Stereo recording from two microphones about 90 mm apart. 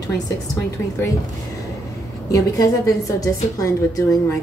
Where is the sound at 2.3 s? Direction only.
40° left (ahead or behind).